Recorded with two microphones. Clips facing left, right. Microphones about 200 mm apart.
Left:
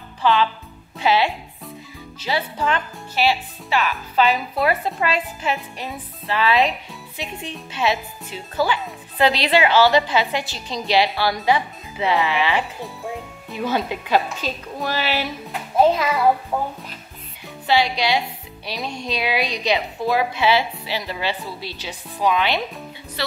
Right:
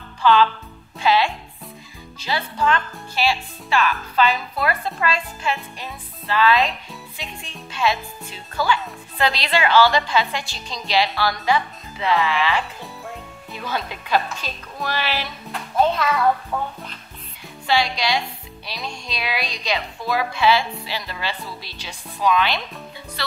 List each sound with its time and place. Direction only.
0.2 s music: 15° left (ahead or behind)
1.0 s speech: 10° left (ahead or behind)
12.8 s music: centre (ahead or behind)
13.6 s speech: 10° left (ahead or behind)
17.6 s speech: 10° left (ahead or behind)